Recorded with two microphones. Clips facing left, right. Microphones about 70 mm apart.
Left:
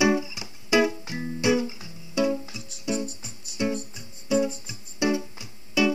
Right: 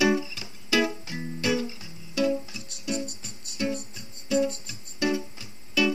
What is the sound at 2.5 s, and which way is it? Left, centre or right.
Music, centre.